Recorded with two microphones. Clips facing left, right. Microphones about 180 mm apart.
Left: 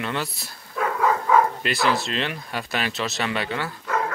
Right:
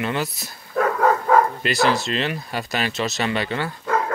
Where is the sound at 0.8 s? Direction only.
45° right (ahead or behind).